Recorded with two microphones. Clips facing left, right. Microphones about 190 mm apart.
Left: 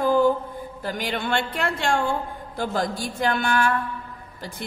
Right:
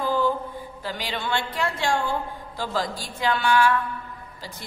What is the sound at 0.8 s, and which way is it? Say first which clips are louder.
A woman's voice: left 3 dB; 55° left (ahead or behind).